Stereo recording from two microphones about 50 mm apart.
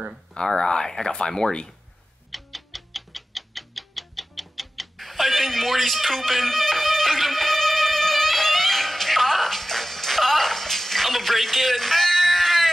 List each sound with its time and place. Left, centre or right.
0.3 s speech: centre
2.3 s tick-tock: centre